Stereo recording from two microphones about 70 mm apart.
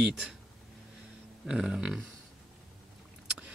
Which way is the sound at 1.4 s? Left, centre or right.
Centre.